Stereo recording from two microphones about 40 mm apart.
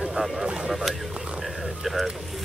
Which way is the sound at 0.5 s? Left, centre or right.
Right.